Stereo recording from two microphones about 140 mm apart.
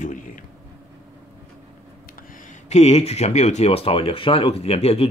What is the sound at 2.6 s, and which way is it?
Speech, 50° left (ahead or behind).